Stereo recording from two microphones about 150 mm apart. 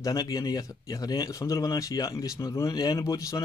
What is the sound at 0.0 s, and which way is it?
Speech, 25° left (ahead or behind).